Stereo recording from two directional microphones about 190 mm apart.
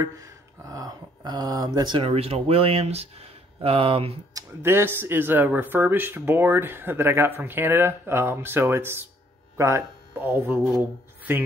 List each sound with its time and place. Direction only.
0.0 s speech: 20° right (ahead or behind)
4.3 s speech: 15° right (ahead or behind)